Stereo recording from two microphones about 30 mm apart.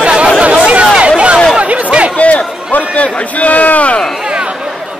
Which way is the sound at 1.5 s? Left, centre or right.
Right.